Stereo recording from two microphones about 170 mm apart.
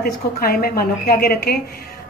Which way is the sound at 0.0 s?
60° left (ahead or behind).